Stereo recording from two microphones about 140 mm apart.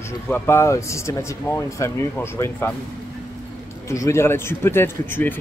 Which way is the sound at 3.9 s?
20° left (ahead or behind).